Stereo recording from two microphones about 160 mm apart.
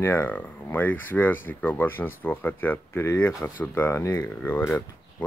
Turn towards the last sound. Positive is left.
turn(degrees=15)  # may be behind; listen again after turning